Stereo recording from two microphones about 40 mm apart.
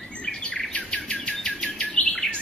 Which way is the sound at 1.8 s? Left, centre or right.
Left.